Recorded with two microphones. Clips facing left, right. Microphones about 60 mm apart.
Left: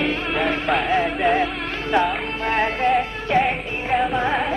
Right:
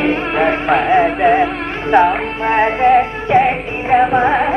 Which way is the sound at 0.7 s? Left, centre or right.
Centre.